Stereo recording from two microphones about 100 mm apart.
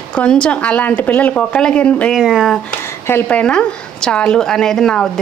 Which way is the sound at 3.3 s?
10° left (ahead or behind).